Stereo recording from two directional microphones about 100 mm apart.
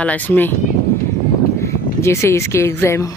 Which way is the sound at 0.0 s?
15° left (ahead or behind).